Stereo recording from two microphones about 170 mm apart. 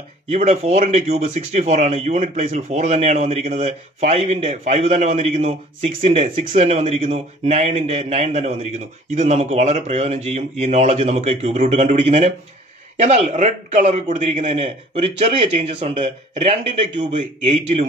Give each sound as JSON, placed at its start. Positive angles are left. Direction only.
{"t": 0.3, "sound": "speech", "side_deg": -40}